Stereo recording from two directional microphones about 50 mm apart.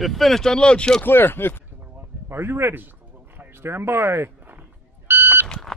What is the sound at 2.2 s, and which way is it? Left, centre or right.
Speech, right.